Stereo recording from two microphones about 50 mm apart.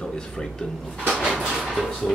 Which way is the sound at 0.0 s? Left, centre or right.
Centre.